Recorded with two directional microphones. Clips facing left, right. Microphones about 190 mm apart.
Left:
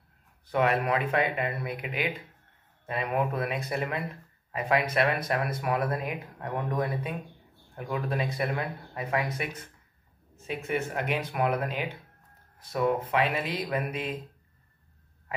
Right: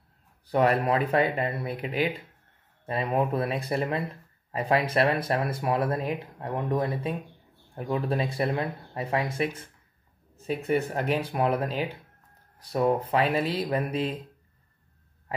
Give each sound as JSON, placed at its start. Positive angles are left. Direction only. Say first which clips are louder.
{"t": 0.5, "sound": "speech", "louder": "right 3 dB", "side_deg": -35}